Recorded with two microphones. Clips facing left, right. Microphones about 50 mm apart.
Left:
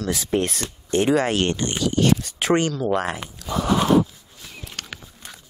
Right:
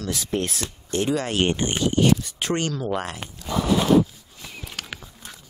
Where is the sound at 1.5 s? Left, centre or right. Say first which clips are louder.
Even; right.